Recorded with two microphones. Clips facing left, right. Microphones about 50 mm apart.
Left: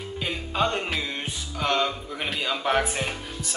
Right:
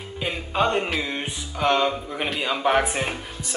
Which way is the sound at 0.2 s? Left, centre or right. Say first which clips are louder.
Right 3 dB; centre.